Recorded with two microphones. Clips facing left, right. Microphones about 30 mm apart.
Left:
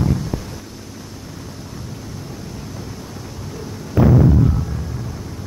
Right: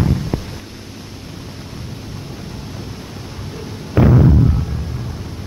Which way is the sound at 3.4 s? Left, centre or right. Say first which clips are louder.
Right 1 dB; right.